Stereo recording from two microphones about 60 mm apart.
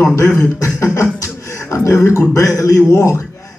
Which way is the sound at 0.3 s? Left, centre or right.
Left.